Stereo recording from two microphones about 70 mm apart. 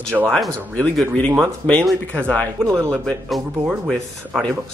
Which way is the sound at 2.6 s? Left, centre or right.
Right.